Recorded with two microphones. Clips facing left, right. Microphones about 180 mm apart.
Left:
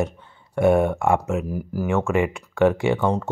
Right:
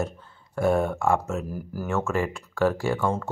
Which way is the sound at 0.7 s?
15° left (ahead or behind).